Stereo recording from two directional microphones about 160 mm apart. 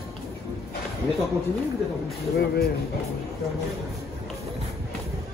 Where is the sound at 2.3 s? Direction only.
80° left.